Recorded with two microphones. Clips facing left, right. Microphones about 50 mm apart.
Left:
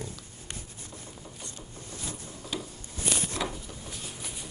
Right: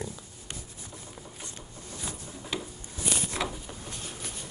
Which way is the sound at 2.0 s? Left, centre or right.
Right.